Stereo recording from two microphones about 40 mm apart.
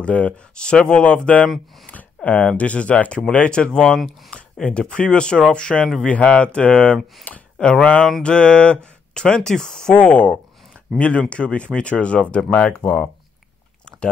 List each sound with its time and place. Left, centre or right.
0.0 s speech: left
0.6 s speech: left
1.9 s speech: left
7.3 s speech: left
7.8 s speech: left
9.9 s speech: left